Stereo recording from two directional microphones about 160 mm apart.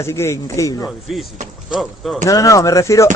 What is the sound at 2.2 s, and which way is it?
Speech, 20° left (ahead or behind).